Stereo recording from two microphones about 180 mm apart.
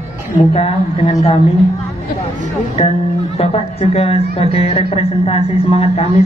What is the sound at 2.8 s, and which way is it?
A man's voice, 35° left (ahead or behind).